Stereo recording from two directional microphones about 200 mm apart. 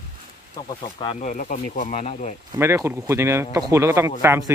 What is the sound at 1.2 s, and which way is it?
Speech, 40° left (ahead or behind).